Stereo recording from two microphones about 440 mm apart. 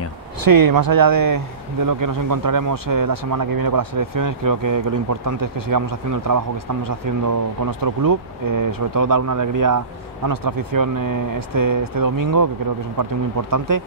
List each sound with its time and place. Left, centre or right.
0.4 s a man's voice: right
13.5 s a man's voice: right